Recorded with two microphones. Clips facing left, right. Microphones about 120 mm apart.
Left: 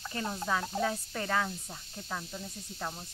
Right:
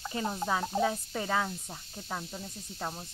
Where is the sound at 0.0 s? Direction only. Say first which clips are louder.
Right 3 dB; 20° right (ahead or behind).